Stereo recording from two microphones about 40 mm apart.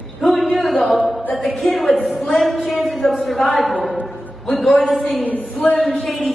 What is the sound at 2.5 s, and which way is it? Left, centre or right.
Speech, right.